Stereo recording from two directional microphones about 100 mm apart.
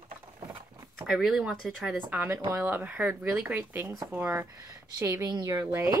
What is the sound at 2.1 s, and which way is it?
Speech, 20° right (ahead or behind).